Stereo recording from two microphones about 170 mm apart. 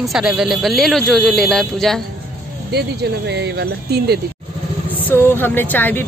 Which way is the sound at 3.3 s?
80° right.